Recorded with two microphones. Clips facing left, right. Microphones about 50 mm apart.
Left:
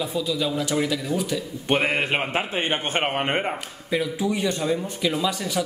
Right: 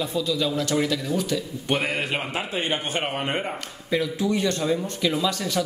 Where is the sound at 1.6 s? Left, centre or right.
Left.